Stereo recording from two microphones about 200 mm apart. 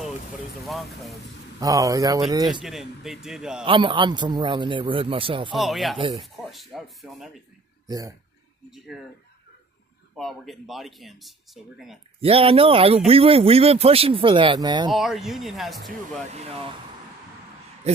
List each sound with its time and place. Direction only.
1.6 s speech: 15° right (ahead or behind)
2.6 s speech: centre (ahead or behind)
3.6 s speech: 25° right (ahead or behind)
5.6 s speech: centre (ahead or behind)
5.9 s speech: 25° right (ahead or behind)
6.3 s speech: centre (ahead or behind)
8.6 s speech: centre (ahead or behind)
10.1 s speech: centre (ahead or behind)
12.2 s speech: 30° right (ahead or behind)
14.9 s speech: centre (ahead or behind)
16.3 s speech: 30° right (ahead or behind)